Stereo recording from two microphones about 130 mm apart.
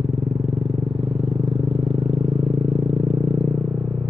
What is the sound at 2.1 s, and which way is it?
Vehicle, 60° right (ahead or behind).